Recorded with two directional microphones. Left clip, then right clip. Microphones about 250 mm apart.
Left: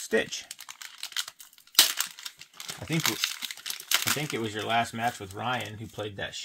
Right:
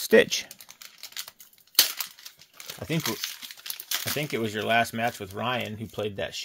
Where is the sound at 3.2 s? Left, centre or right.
Left.